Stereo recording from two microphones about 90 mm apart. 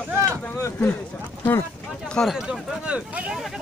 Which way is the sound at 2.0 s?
10° left (ahead or behind).